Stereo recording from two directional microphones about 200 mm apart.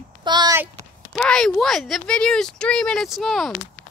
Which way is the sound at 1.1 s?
5° left (ahead or behind).